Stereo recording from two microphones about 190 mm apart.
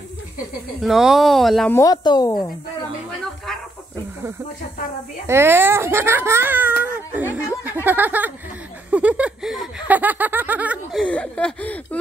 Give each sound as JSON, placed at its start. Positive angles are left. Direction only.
{"t": 0.8, "sound": "speech", "side_deg": 0}
{"t": 1.7, "sound": "speech", "side_deg": 15}
{"t": 5.2, "sound": "a child's voice", "side_deg": -15}
{"t": 8.9, "sound": "snicker", "side_deg": -5}
{"t": 11.0, "sound": "speech", "side_deg": 5}